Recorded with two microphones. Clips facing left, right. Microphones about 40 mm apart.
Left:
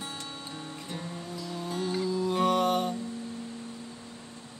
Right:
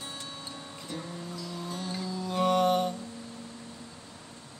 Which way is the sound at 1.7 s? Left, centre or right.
Centre.